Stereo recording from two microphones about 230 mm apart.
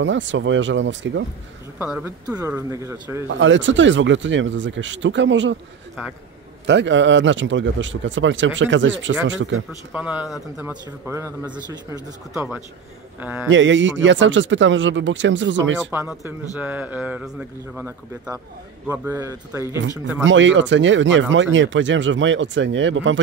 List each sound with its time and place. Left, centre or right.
0.0 s speech: right
1.8 s speech: centre
3.3 s speech: right
6.6 s speech: right
9.9 s speech: centre
13.5 s speech: right
15.9 s speech: centre
20.2 s speech: right